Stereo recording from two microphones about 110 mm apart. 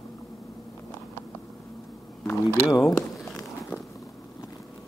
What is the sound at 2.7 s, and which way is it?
Speech, 30° left (ahead or behind).